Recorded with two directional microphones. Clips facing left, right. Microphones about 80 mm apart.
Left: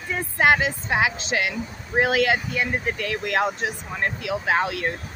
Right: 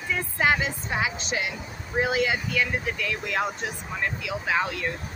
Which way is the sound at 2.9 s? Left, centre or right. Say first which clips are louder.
Left 3 dB; left.